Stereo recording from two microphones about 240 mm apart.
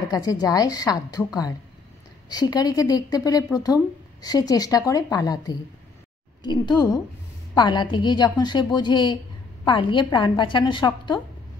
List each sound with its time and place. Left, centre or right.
0.1 s a woman's voice: centre